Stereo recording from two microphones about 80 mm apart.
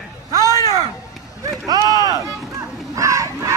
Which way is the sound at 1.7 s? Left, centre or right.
Right.